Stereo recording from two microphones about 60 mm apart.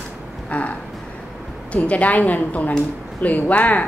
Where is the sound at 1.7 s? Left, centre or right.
Left.